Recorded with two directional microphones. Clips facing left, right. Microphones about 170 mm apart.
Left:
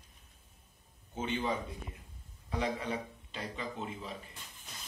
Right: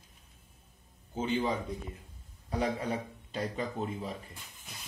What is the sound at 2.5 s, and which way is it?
A man's voice, 35° right (ahead or behind).